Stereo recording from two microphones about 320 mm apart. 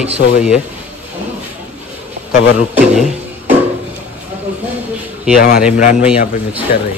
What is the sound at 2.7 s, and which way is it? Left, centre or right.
Speech, centre.